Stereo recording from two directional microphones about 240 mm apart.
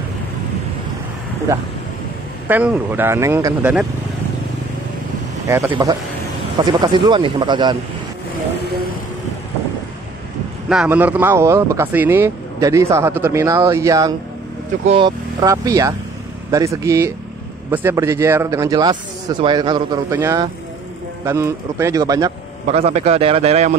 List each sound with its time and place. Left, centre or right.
2.4 s speech: centre
5.7 s a man's voice: centre
10.7 s speech: centre
22.7 s a man's voice: right